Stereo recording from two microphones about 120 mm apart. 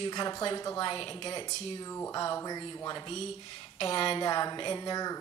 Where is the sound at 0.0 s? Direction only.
35° left (ahead or behind).